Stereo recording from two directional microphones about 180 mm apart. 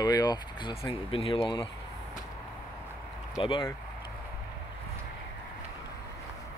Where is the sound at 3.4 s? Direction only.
25° left (ahead or behind).